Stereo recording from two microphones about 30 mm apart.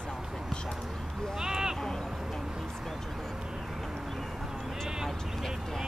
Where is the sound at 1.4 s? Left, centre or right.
Right.